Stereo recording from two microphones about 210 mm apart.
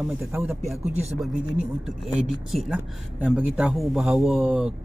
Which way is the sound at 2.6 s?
5° right (ahead or behind).